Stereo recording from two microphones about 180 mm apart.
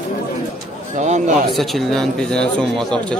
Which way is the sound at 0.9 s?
40° right (ahead or behind).